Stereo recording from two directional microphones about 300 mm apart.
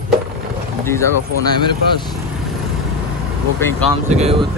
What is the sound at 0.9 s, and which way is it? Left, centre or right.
Speech, centre.